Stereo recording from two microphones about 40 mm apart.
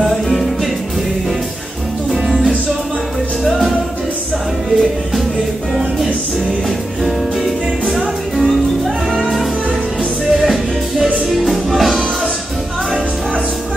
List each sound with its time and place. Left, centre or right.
2.0 s music: centre
8.4 s music: centre
10.3 s music: centre